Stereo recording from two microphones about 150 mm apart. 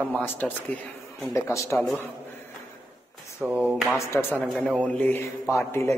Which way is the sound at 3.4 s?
5° right (ahead or behind).